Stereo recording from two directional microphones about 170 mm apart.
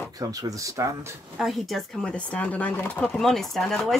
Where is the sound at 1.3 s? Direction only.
Centre (ahead or behind).